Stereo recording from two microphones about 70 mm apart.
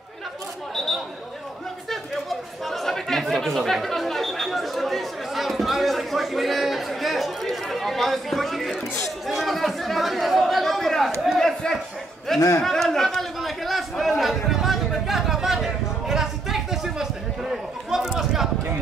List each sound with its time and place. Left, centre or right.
0.7 s chatter: centre
9.3 s speech: centre
12.4 s a man's voice: left
12.6 s chatter: centre